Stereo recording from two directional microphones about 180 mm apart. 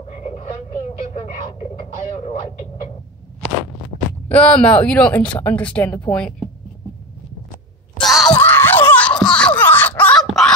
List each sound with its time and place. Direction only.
0.1 s a sound: 40° left (ahead or behind)
1.8 s radio: 35° left (ahead or behind)
4.3 s speech: 5° left (ahead or behind)
8.0 s wail: centre (ahead or behind)
8.4 s screaming: 10° left (ahead or behind)
9.6 s a sound: 10° left (ahead or behind)